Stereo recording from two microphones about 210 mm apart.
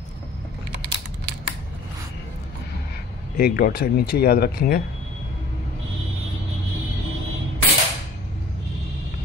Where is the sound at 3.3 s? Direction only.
45° left (ahead or behind).